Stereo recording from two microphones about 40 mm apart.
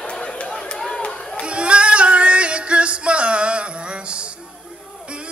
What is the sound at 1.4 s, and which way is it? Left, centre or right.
Music, right.